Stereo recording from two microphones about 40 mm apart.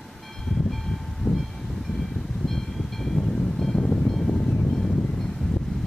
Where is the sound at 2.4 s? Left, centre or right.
Centre; by 4.1 s left.